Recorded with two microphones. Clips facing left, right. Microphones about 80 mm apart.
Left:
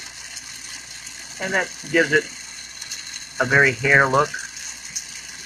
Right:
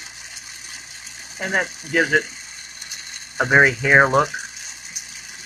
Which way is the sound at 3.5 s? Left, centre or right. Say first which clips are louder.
Right 2 dB; right.